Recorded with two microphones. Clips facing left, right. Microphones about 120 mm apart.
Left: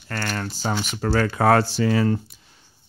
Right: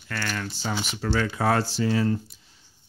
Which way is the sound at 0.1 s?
45° left (ahead or behind).